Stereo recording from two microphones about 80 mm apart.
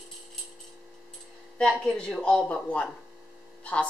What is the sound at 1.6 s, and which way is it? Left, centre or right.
A woman's voice, centre.